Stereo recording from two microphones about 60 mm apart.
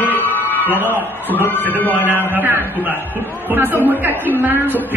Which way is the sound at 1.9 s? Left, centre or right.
Right.